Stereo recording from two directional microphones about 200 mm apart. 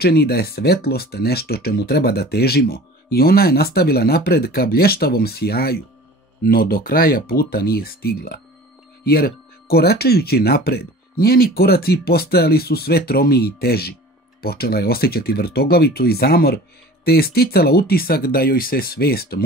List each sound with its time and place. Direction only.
0.0 s speech: 50° left (ahead or behind)